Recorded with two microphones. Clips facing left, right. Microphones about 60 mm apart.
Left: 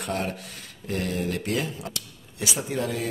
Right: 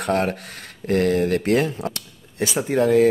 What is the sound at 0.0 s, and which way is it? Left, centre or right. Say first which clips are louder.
Speech: right 8 dB; right.